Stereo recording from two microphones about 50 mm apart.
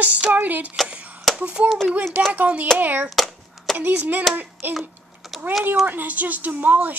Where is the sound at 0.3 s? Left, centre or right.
Right.